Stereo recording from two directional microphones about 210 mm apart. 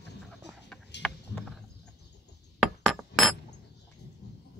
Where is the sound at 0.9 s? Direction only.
55° left (ahead or behind).